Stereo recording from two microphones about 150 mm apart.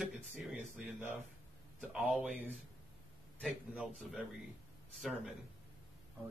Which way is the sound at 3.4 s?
Centre (ahead or behind).